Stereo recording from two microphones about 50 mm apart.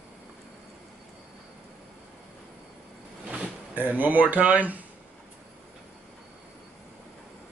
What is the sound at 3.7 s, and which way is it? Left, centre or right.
Speech, right.